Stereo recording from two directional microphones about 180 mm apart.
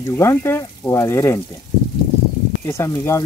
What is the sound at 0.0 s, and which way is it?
Speech, 15° left (ahead or behind).